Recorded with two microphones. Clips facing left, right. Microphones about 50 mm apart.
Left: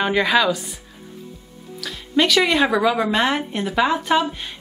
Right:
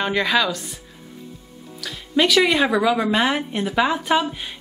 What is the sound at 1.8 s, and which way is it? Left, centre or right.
Speech, centre.